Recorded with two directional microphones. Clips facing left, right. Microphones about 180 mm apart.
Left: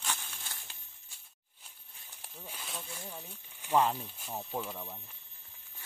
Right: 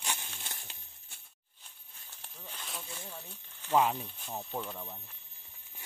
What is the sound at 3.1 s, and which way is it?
Speech, 10° left (ahead or behind).